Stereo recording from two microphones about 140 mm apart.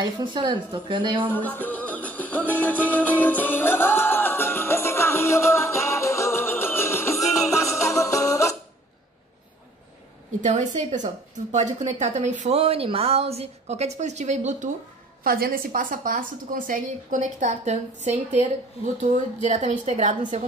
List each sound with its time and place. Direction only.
0.0 s a woman's voice: 35° right (ahead or behind)
1.3 s music: 15° left (ahead or behind)
10.4 s a woman's voice: 60° right (ahead or behind)
15.2 s a woman's voice: 90° right; by 20.2 s 60° right (ahead or behind)